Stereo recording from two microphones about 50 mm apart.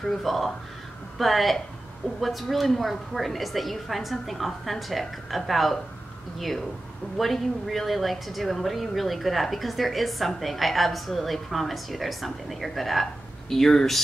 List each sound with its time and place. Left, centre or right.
0.0 s a woman's voice: centre
7.2 s a woman's voice: centre